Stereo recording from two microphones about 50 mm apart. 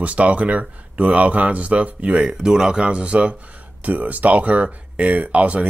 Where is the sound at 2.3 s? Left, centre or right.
Centre.